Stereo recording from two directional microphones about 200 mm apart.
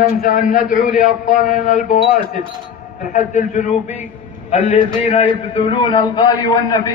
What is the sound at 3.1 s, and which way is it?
A man's voice, 40° left (ahead or behind).